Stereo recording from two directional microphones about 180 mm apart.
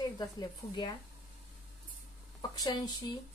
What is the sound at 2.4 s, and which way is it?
Speech, 20° left (ahead or behind).